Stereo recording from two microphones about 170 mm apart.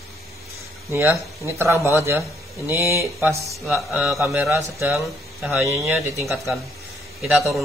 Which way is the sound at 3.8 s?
Centre (ahead or behind).